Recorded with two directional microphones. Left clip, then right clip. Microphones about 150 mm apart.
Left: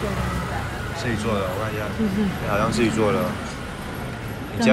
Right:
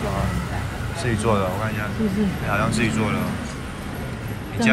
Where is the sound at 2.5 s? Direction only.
15° left (ahead or behind).